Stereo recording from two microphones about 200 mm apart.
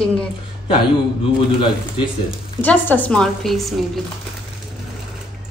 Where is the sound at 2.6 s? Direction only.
10° left (ahead or behind).